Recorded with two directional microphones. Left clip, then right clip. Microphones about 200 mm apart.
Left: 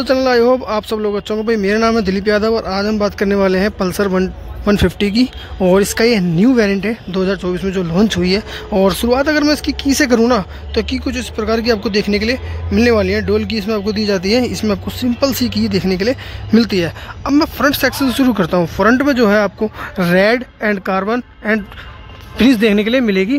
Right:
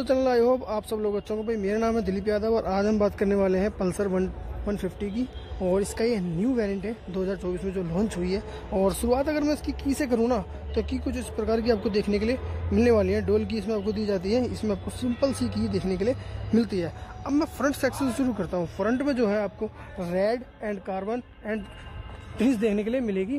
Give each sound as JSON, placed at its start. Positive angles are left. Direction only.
{"t": 0.0, "sound": "speech", "side_deg": 0}
{"t": 2.6, "sound": "speech", "side_deg": -5}
{"t": 4.7, "sound": "speech", "side_deg": 15}